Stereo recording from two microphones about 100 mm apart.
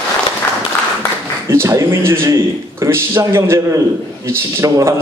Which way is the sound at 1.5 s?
25° right (ahead or behind).